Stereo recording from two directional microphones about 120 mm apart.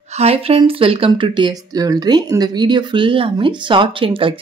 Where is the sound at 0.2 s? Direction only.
55° right (ahead or behind).